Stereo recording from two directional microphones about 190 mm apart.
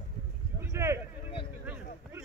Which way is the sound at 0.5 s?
15° right (ahead or behind).